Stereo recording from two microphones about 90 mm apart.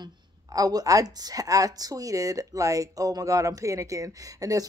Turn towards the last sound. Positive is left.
turn(degrees=-40)  # may be behind; listen again after turning